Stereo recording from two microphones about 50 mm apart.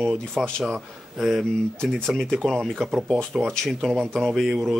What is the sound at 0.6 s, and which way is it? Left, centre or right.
Speech, centre.